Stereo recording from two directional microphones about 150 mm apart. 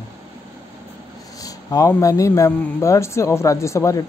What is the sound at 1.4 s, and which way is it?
Speech, 25° left (ahead or behind).